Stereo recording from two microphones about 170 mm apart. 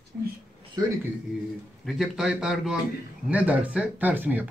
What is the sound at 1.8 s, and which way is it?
A man's voice, centre (ahead or behind).